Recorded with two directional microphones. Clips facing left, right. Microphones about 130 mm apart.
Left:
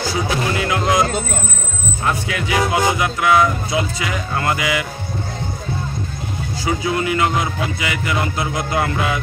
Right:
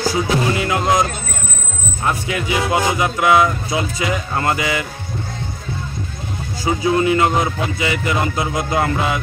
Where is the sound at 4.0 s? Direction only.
25° right (ahead or behind).